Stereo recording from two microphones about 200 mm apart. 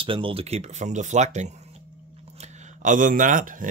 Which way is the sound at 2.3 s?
40° right (ahead or behind).